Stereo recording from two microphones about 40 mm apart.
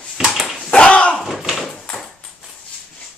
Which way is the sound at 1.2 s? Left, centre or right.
Centre.